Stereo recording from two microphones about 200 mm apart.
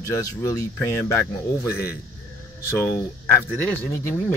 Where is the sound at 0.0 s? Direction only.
15° left (ahead or behind).